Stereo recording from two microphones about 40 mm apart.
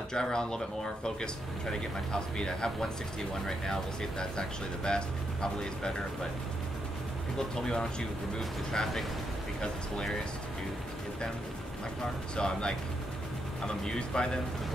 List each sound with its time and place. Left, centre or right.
0.1 s speech: centre
7.3 s speech: centre
12.0 s speech: left